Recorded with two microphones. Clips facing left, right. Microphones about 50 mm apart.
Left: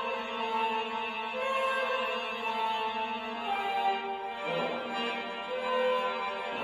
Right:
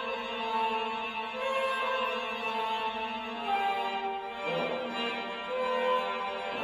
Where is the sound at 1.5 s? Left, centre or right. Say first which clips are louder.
Even; left.